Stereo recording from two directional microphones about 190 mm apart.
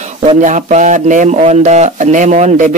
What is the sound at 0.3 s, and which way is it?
Speech, 40° right (ahead or behind).